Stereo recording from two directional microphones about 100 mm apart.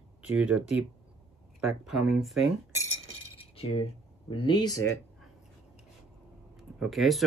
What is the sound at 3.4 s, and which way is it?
Coin, 75° left (ahead or behind).